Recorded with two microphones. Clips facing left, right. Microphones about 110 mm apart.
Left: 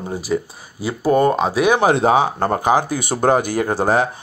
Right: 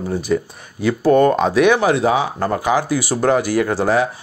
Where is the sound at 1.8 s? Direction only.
45° left (ahead or behind).